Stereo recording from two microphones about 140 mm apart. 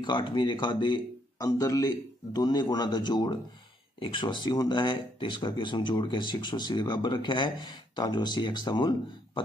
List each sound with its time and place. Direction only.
0.0 s speech: 35° left (ahead or behind)